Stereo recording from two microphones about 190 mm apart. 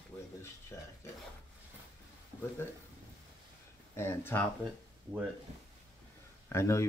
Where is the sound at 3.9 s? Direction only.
10° left (ahead or behind).